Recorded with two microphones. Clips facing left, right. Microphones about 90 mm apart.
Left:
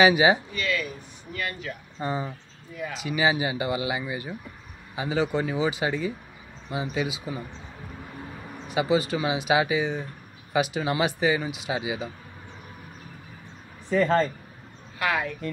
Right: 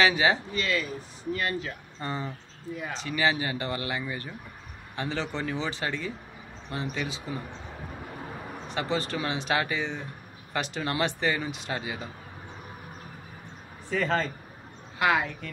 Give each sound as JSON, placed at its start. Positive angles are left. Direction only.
{"t": 0.0, "sound": "speech", "side_deg": 15}
{"t": 0.6, "sound": "speech", "side_deg": -30}
{"t": 2.0, "sound": "speech", "side_deg": 10}
{"t": 8.6, "sound": "speech", "side_deg": 5}
{"t": 13.8, "sound": "speech", "side_deg": 5}
{"t": 15.0, "sound": "speech", "side_deg": -20}